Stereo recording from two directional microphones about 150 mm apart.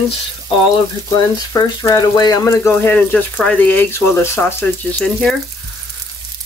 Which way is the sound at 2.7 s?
5° left (ahead or behind).